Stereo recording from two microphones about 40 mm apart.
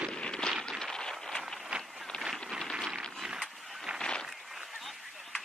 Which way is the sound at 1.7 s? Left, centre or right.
Right.